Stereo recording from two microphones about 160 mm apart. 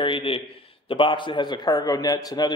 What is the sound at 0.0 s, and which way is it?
Speech, 35° left (ahead or behind).